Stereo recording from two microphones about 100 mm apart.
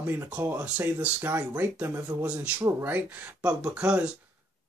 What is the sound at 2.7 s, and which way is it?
Speech, 25° right (ahead or behind).